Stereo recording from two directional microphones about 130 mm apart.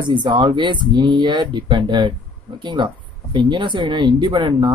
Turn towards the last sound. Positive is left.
turn(degrees=-35)  # may be behind; listen again after turning